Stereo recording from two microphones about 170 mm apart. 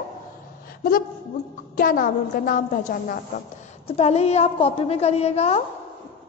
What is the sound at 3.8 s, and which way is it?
A woman's voice, 40° left (ahead or behind).